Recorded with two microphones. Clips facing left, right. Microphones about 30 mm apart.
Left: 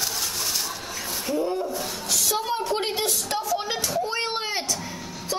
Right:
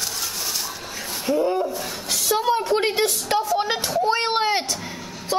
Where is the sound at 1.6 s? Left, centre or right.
Centre.